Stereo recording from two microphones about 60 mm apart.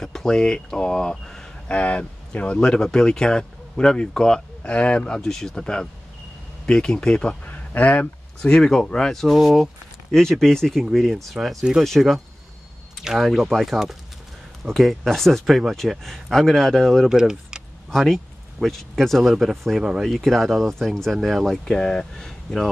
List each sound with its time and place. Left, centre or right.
0.0 s speech: centre
1.7 s speech: left
7.4 s a sound: left
8.4 s speech: centre
17.1 s speech: centre
17.9 s speech: centre